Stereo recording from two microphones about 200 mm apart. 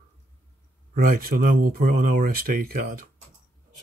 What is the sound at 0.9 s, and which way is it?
Speech, 45° right (ahead or behind).